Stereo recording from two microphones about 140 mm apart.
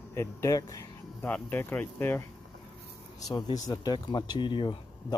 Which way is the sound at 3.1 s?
30° left (ahead or behind).